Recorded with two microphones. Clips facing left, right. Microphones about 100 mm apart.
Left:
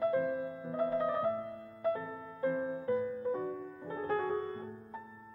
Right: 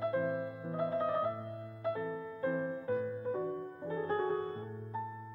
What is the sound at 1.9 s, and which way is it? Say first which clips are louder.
Music: right 3 dB; centre (ahead or behind).